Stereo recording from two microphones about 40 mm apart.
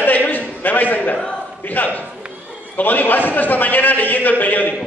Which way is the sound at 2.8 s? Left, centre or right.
Left.